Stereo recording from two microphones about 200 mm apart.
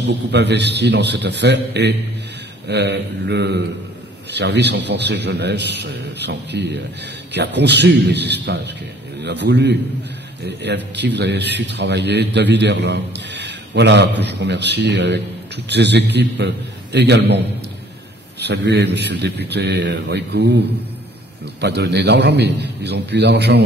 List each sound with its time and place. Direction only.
0.0 s a man's voice: 60° right (ahead or behind)
18.4 s a man's voice: 60° right (ahead or behind)